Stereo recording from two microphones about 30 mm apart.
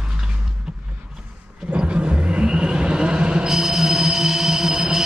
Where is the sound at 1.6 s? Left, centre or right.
Right.